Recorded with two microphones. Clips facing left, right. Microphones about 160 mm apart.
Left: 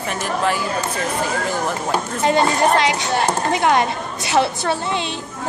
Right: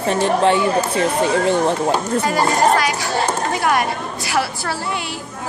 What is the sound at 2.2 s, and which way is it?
Speech, 25° left (ahead or behind).